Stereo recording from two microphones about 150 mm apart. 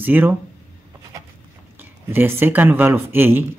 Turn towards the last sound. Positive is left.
turn(degrees=-15)  # may be behind; listen again after turning